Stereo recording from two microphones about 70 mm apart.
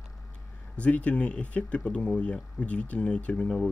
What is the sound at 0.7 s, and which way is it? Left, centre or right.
Speech, centre.